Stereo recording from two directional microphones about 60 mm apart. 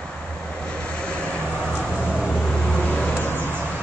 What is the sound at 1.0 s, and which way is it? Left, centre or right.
Vehicle, centre.